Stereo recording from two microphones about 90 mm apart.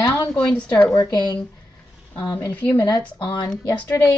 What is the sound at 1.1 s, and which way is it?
Speech, 50° left (ahead or behind).